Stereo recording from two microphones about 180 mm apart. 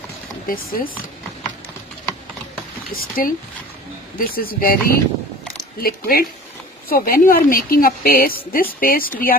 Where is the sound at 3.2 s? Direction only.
50° left (ahead or behind).